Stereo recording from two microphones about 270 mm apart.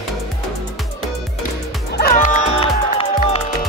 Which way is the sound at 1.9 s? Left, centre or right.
Left.